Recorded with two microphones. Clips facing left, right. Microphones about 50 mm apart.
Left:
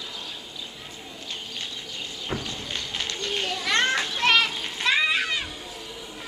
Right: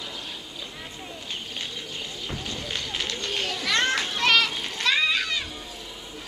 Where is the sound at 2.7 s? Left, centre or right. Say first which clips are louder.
Right 1 dB; centre.